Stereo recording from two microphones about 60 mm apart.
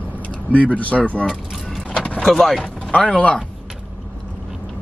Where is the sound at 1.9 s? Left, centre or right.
Left.